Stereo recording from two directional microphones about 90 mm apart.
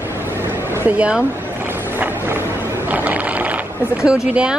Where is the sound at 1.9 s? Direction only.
25° right (ahead or behind).